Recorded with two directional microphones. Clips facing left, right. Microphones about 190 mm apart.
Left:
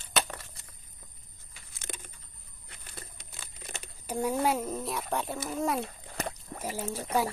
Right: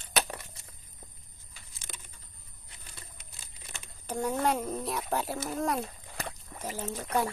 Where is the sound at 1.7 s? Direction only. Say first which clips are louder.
Left 7 dB; 55° left (ahead or behind).